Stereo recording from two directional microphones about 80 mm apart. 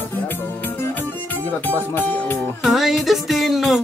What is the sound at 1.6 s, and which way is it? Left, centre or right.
Speech, left.